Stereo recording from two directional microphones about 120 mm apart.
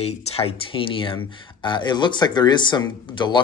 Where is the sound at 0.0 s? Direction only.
55° left (ahead or behind).